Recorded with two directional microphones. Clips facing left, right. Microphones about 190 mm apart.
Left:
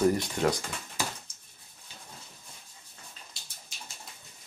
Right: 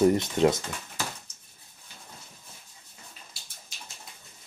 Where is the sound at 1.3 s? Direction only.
10° left (ahead or behind).